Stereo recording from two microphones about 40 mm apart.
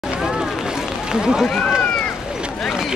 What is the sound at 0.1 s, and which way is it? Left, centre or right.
Run, centre.